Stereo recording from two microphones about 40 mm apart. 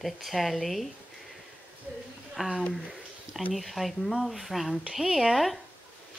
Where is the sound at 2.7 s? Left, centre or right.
Centre.